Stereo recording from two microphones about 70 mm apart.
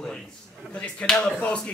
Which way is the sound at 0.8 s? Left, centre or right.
Centre.